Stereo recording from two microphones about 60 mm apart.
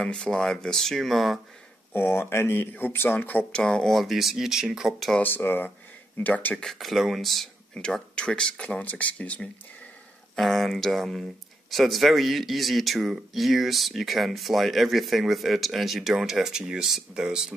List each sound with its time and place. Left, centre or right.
0.0 s speech: centre
2.0 s speech: left
3.5 s speech: centre
3.9 s speech: centre
5.2 s speech: left
6.2 s speech: left
6.6 s speech: centre
7.7 s speech: centre
10.3 s speech: centre